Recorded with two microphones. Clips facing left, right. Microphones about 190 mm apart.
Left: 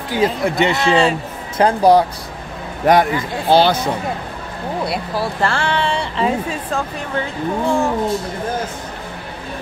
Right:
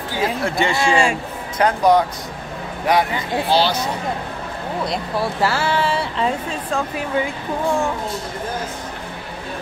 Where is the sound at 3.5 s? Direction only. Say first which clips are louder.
Left 5 dB; 55° left (ahead or behind).